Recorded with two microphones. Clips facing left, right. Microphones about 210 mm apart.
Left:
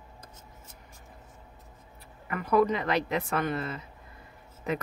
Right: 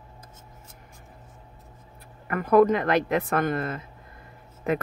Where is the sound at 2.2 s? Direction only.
50° right (ahead or behind).